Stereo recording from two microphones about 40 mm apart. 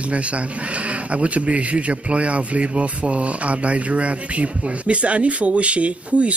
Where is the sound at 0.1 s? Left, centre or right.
Right.